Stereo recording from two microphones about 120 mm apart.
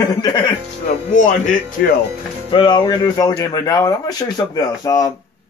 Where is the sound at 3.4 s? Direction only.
30° left (ahead or behind).